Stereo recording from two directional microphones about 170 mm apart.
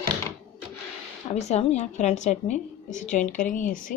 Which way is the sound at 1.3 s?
40° left (ahead or behind).